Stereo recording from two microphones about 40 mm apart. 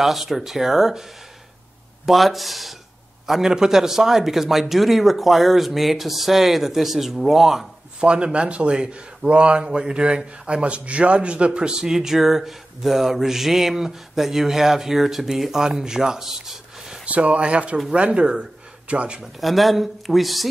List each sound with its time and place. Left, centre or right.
0.0 s speech: centre
2.0 s speech: centre
8.0 s speech: right
17.0 s speech: right
19.4 s speech: centre